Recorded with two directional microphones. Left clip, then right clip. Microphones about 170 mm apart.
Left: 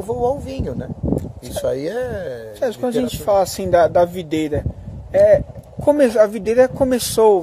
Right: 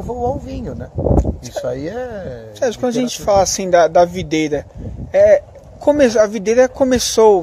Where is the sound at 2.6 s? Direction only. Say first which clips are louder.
Right 3 dB; 10° right (ahead or behind).